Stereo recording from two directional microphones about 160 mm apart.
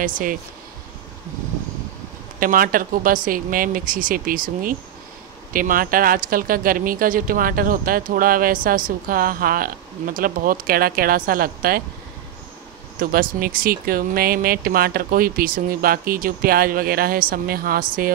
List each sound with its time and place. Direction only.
0.0 s speech: 60° right (ahead or behind)
2.4 s speech: 60° right (ahead or behind)
13.0 s speech: 65° right (ahead or behind)